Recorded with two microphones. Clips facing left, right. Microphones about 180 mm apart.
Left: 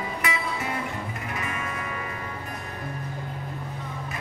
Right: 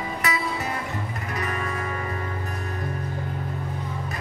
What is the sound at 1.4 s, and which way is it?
Music, 40° right (ahead or behind).